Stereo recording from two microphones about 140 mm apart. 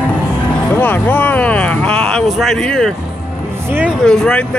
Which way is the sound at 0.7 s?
10° left (ahead or behind).